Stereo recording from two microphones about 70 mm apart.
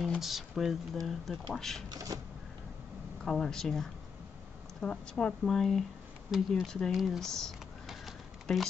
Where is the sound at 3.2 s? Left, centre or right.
Centre.